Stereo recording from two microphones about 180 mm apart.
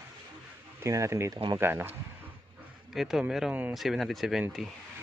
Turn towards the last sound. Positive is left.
turn(degrees=0)  # may be behind; listen again after turning